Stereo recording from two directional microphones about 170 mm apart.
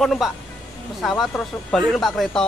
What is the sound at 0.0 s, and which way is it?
Speech, centre (ahead or behind).